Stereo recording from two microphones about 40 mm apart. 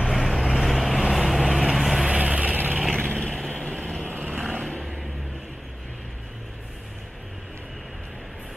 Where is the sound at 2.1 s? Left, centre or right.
Right.